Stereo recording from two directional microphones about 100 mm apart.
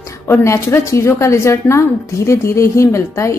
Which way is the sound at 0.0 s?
30° left (ahead or behind).